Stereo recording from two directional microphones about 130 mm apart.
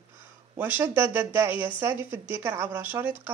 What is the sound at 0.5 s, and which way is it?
Speech, 15° right (ahead or behind).